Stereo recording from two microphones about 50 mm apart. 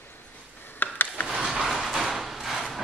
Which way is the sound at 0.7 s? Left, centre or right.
Left.